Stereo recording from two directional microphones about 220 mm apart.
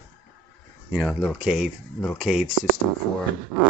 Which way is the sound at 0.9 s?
Centre (ahead or behind).